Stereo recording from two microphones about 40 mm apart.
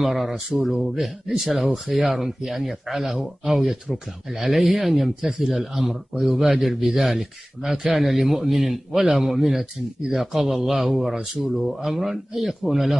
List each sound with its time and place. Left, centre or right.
0.0 s a man's voice: centre
7.7 s a man's voice: centre
8.0 s a man's voice: centre